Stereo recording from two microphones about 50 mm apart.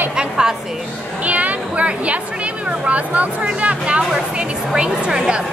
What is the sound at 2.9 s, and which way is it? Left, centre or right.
Speech, right.